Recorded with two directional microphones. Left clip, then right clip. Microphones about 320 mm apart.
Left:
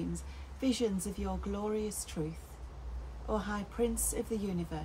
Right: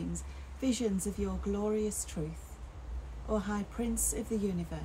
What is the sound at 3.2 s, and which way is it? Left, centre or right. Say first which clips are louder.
Speech: right 1 dB; centre.